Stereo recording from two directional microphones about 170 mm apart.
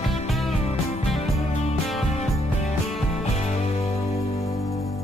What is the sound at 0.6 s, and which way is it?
Music, 40° left (ahead or behind).